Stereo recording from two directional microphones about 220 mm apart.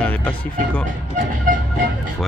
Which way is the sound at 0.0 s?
5° left (ahead or behind).